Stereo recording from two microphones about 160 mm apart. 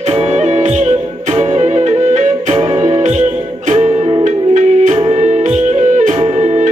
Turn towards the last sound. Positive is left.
turn(degrees=-45)  # may be behind; listen again after turning